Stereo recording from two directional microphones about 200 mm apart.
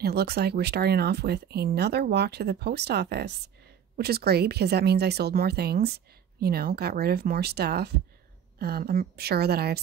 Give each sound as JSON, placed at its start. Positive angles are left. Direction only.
{"t": 0.0, "sound": "speech", "side_deg": -55}